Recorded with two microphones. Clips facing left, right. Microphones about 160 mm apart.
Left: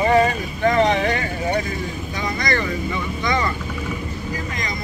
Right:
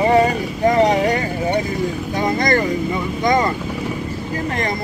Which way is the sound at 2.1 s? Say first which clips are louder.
Right 6 dB; 50° right (ahead or behind).